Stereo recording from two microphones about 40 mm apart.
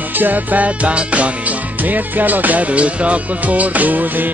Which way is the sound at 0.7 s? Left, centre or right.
Right.